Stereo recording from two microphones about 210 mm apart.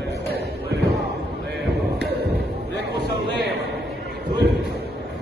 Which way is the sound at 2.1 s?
50° right (ahead or behind).